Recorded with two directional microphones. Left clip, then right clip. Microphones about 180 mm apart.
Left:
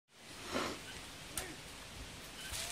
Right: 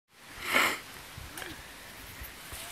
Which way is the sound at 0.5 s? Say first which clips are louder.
Right 13 dB; 15° right (ahead or behind).